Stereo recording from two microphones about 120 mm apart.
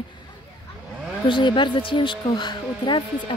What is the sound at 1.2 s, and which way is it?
Speech, 40° left (ahead or behind).